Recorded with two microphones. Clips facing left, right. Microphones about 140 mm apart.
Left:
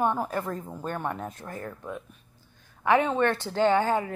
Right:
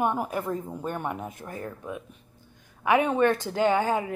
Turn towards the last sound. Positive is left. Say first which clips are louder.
# left 1 dB
turn(degrees=-15)  # may be behind; listen again after turning